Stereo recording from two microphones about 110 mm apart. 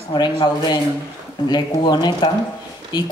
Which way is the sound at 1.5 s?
40° left (ahead or behind).